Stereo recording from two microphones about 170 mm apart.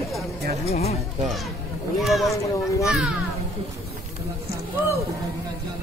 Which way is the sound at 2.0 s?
Centre (ahead or behind).